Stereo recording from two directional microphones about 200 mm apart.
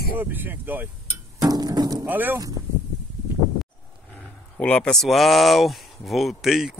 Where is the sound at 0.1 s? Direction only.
10° right (ahead or behind).